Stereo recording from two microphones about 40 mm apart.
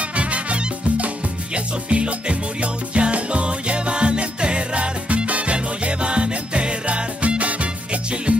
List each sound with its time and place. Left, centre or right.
0.1 s music: right